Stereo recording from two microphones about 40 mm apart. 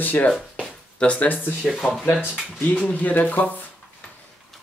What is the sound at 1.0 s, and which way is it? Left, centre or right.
Speech, left.